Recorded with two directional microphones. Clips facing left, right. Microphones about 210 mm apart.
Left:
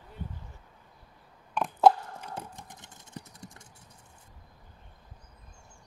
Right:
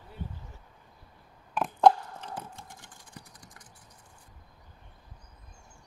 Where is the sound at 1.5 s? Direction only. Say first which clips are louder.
Even; centre (ahead or behind).